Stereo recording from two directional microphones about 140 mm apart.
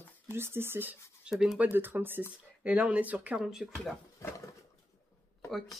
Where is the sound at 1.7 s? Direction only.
15° right (ahead or behind).